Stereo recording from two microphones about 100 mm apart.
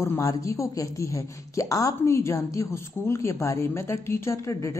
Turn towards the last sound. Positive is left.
turn(degrees=30)  # may be behind; listen again after turning